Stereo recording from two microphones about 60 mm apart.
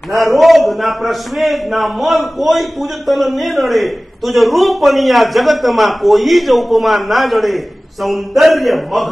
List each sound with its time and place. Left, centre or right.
0.1 s a man's voice: centre